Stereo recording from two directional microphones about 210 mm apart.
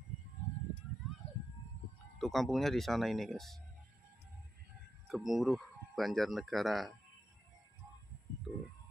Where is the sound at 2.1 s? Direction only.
Centre (ahead or behind).